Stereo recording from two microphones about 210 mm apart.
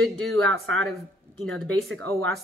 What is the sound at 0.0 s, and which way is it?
Speech, centre (ahead or behind).